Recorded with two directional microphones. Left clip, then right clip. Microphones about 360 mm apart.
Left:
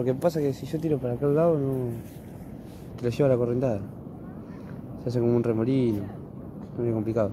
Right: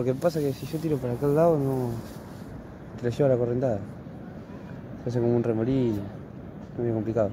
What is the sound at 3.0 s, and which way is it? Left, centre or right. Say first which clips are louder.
Speech: even; centre.